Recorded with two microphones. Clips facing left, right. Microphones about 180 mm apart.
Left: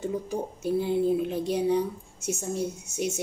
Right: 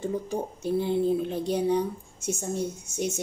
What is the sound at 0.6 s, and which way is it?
Speech, 5° left (ahead or behind).